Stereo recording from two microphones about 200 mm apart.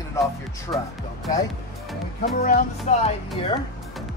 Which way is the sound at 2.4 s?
45° left (ahead or behind).